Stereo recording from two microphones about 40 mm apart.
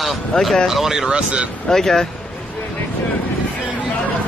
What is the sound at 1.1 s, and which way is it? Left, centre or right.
Speech, right.